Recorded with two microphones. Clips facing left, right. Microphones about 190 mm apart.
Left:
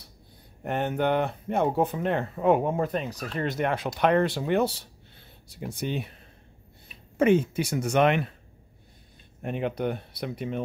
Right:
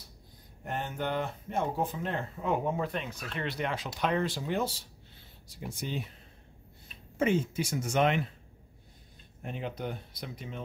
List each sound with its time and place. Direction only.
0.7 s speech: 65° left (ahead or behind)
7.2 s speech: 65° left (ahead or behind)
9.4 s speech: 65° left (ahead or behind)